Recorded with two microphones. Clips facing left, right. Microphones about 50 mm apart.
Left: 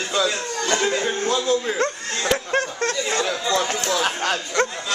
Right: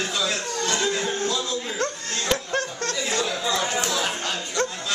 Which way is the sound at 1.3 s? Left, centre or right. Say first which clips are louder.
Left 6 dB; left.